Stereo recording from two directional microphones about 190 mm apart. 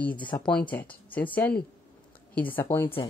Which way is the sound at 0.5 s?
5° left (ahead or behind).